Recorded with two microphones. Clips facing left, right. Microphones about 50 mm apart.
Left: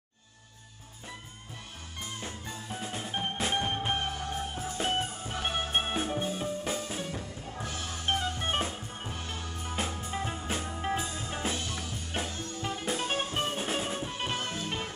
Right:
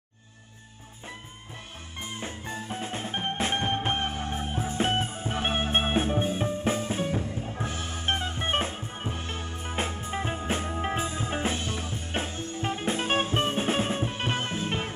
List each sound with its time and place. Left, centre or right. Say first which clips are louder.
2.0 s music: right 4 dB; right